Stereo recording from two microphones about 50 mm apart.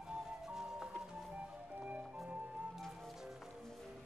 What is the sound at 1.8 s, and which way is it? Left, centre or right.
Music, right.